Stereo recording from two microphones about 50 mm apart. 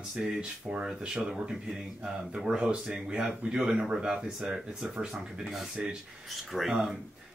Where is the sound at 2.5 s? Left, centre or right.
Right; by 6.7 s centre.